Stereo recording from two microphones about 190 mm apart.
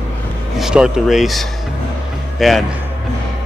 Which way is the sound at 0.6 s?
5° right (ahead or behind).